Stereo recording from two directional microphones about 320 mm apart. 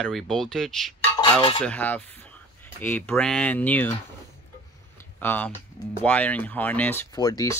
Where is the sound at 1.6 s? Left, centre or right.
Centre.